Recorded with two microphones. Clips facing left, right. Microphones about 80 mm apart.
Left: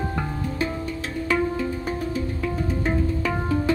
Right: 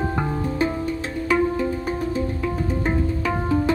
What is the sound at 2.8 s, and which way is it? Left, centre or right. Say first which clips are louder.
Music: even; centre.